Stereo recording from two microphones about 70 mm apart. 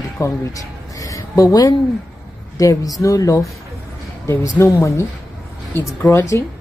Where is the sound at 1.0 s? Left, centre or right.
Left.